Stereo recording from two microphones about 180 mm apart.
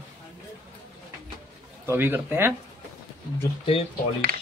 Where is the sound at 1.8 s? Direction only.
10° right (ahead or behind).